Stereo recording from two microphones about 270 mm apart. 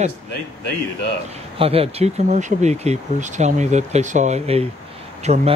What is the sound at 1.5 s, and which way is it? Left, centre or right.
Speech, right.